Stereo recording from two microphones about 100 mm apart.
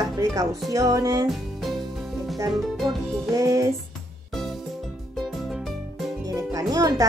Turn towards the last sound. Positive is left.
turn(degrees=-35)  # may be behind; listen again after turning